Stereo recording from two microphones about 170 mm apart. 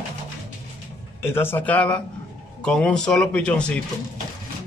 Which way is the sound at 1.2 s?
15° left (ahead or behind).